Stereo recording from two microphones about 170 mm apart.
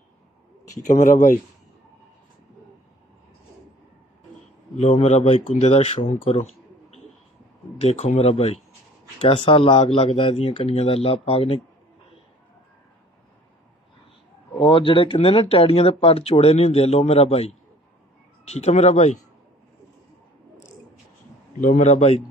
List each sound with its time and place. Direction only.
0.8 s a man's voice: 45° left (ahead or behind)
4.7 s speech: 40° left (ahead or behind)
6.2 s a sound: 35° left (ahead or behind)
7.8 s speech: 40° left (ahead or behind)
14.5 s a man's voice: 30° left (ahead or behind)
21.5 s a man's voice: 45° left (ahead or behind)